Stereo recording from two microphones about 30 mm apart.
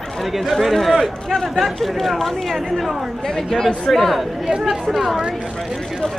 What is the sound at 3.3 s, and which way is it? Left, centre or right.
Speech, centre.